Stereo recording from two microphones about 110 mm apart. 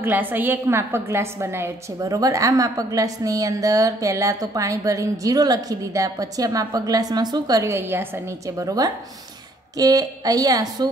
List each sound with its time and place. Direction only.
0.0 s a woman's voice: 15° right (ahead or behind); by 10.9 s 35° right (ahead or behind)